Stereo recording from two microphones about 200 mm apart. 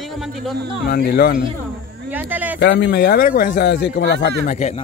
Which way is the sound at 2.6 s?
60° left (ahead or behind).